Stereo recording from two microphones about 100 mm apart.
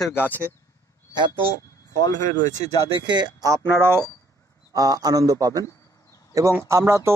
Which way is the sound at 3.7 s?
25° right (ahead or behind).